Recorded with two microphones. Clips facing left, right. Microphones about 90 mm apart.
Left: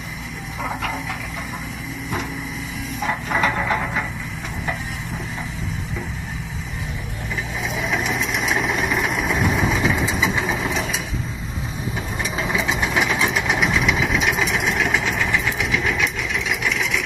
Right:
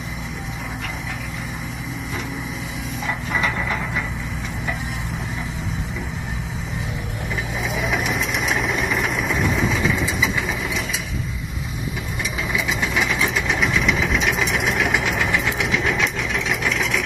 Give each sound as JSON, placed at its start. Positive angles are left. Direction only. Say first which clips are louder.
{"t": 3.3, "sound": "a sound", "louder": "left 3 dB", "side_deg": 30}
{"t": 7.6, "sound": "vehicle", "louder": "even", "side_deg": 0}
{"t": 9.6, "sound": "vehicle", "louder": "left 1 dB", "side_deg": 20}
{"t": 12.2, "sound": "vehicle", "louder": "left 2 dB", "side_deg": 30}
{"t": 16.6, "sound": "engine", "louder": "even", "side_deg": 0}